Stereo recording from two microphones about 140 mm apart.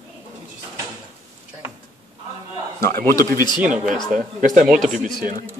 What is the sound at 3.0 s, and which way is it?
Speech, 90° right.